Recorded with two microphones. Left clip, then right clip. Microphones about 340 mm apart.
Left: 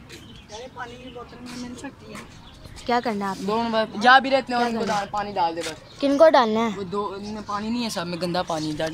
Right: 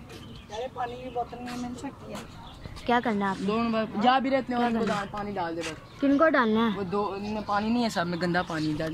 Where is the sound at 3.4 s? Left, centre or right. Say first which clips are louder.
Left 5 dB; left.